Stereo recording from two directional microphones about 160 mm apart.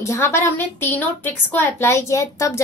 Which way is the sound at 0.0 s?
15° left (ahead or behind).